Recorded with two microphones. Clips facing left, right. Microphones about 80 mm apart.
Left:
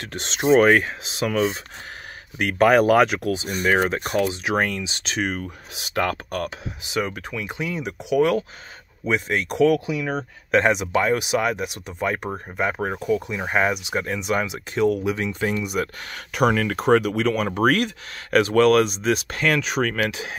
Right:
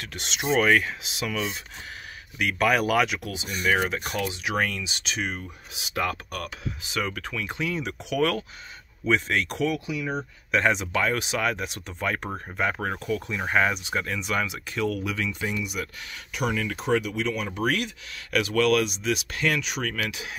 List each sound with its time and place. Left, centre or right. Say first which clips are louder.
0.0 s speech: left 7 dB; left
5.1 s speech: left 6 dB; left
6.8 s speech: left 4 dB; centre
9.7 s speech: left 7 dB; left
10.7 s speech: left 5 dB; centre
15.4 s speech: left 6 dB; left